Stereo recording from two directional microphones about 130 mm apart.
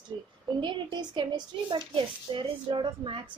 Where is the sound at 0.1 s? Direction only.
40° right (ahead or behind).